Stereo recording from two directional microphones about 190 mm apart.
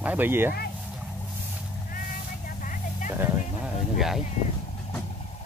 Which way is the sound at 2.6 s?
45° left (ahead or behind).